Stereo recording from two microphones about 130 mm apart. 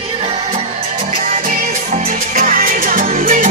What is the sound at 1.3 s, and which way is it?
Music, 85° right.